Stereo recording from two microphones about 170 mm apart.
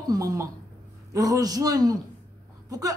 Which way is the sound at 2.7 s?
20° right (ahead or behind).